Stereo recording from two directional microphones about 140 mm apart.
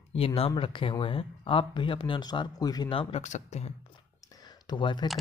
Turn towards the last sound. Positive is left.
turn(degrees=35)  # may be behind; listen again after turning